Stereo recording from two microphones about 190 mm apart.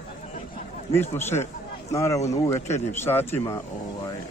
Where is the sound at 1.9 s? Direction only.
15° left (ahead or behind).